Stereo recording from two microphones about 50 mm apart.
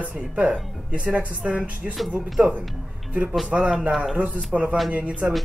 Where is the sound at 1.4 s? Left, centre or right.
Centre.